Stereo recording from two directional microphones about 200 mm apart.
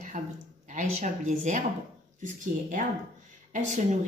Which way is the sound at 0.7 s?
35° right (ahead or behind).